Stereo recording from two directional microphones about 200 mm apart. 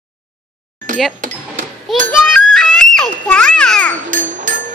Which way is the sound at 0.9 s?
40° right (ahead or behind).